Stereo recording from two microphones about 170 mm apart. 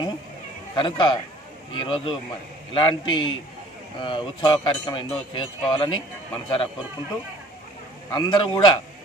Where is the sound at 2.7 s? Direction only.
30° left (ahead or behind).